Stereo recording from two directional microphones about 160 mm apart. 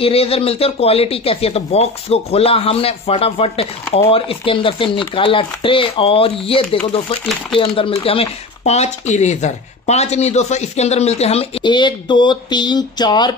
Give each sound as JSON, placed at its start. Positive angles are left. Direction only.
{"t": 0.0, "sound": "speech", "side_deg": 35}